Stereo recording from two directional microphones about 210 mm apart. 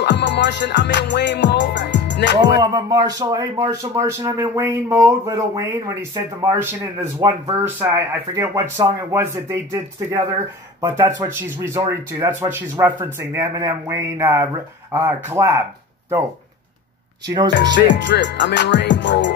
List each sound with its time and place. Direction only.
0.0 s music: 55° left (ahead or behind)
2.6 s speech: 20° right (ahead or behind)
17.7 s music: 55° left (ahead or behind)